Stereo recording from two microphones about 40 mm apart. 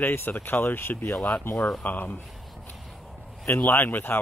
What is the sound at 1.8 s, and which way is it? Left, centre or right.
Speech, left.